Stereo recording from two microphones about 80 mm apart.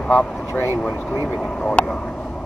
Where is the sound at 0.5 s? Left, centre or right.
Left.